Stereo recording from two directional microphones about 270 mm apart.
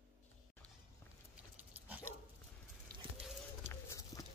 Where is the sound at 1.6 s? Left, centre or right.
Centre.